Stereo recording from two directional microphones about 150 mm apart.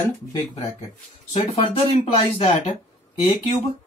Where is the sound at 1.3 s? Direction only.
45° left (ahead or behind).